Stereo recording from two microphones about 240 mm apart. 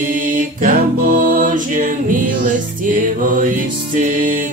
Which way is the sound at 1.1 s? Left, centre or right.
Right.